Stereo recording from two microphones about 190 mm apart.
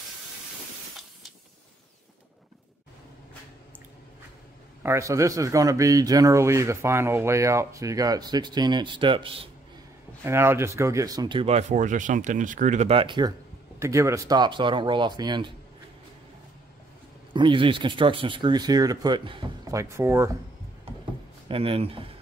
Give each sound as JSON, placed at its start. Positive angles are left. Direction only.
{"t": 4.8, "sound": "a man's voice", "side_deg": -15}
{"t": 10.2, "sound": "speech", "side_deg": -15}
{"t": 17.3, "sound": "speech", "side_deg": -25}
{"t": 21.0, "sound": "a sound", "side_deg": -30}